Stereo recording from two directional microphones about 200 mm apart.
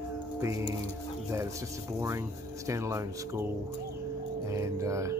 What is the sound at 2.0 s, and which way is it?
Speech, 15° right (ahead or behind).